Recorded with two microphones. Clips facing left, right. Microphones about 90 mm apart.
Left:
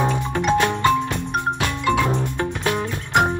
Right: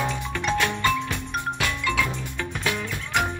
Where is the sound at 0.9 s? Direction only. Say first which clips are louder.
Left 6 dB; 50° left (ahead or behind).